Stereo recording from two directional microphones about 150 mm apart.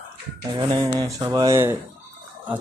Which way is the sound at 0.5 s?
35° right (ahead or behind).